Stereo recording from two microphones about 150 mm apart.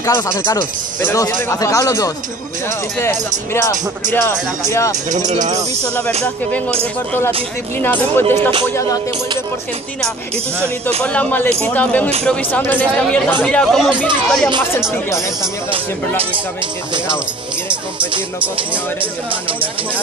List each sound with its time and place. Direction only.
0.0 s speech: 20° left (ahead or behind)
5.4 s speech: 25° right (ahead or behind)
8.2 s speech: 15° left (ahead or behind)
11.0 s speech: 10° left (ahead or behind)